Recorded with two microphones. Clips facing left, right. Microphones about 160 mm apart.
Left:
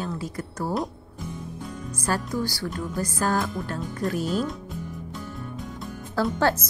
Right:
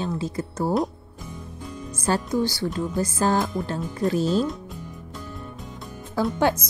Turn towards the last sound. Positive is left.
turn(degrees=-15)  # may be behind; listen again after turning